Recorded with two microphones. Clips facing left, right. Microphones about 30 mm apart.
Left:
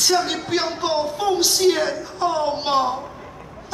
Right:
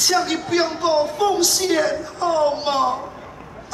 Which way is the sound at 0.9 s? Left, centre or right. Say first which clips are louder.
Right 2 dB; centre.